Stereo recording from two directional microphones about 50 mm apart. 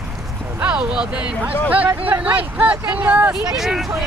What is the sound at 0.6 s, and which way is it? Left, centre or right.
Speech, centre.